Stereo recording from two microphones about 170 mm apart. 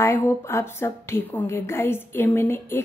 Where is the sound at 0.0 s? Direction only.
15° left (ahead or behind).